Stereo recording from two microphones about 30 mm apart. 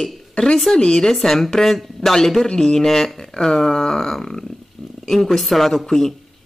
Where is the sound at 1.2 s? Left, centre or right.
Centre.